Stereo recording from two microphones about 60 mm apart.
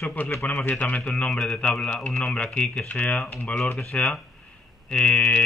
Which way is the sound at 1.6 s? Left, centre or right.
Centre.